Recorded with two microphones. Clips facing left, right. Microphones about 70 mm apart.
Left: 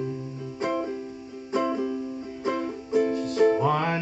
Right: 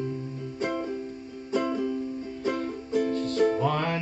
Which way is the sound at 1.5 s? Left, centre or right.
Left.